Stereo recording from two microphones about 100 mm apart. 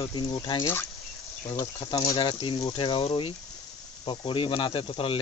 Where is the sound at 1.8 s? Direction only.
50° left (ahead or behind); by 3.3 s 65° left (ahead or behind).